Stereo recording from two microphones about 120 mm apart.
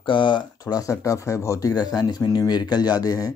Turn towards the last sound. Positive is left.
turn(degrees=30)  # may be behind; listen again after turning